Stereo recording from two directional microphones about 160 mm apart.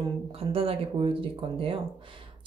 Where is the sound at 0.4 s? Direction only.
35° right (ahead or behind).